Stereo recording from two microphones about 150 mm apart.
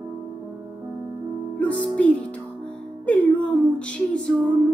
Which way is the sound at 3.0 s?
10° left (ahead or behind).